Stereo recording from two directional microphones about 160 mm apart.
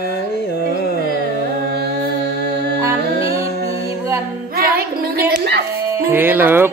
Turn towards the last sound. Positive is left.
turn(degrees=-10)  # may be behind; listen again after turning